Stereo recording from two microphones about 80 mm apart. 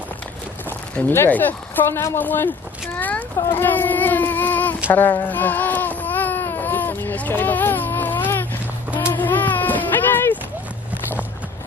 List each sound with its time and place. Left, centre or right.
1.1 s speech: left
5.3 s baby cry: left
8.9 s a sound: left